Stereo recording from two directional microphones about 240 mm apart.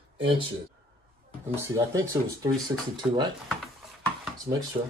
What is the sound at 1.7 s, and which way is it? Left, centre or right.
Speech, centre.